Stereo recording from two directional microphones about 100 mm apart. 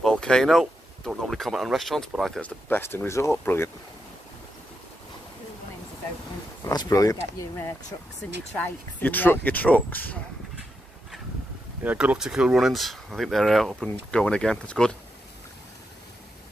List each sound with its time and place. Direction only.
0.0 s speech: 5° left (ahead or behind)
2.4 s speech: 20° left (ahead or behind)
6.6 s speech: 40° left (ahead or behind)
7.9 s speech: 60° left (ahead or behind)
8.5 s speech: 15° left (ahead or behind)
11.8 s speech: 15° right (ahead or behind); by 15.0 s 10° left (ahead or behind)